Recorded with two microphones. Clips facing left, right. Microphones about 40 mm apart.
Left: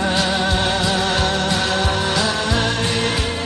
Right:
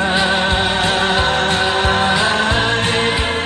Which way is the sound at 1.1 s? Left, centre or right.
Right.